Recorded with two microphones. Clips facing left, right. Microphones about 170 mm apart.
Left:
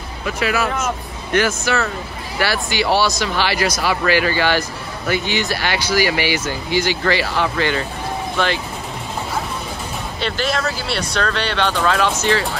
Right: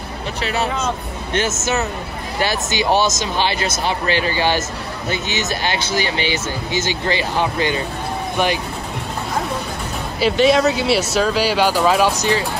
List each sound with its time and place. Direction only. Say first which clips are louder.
0.4 s speech: left 1 dB; 30° right (ahead or behind)
10.2 s speech: right 8 dB; centre (ahead or behind)